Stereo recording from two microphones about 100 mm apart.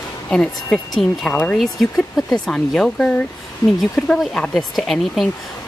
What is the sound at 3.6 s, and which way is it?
Speech, 45° left (ahead or behind).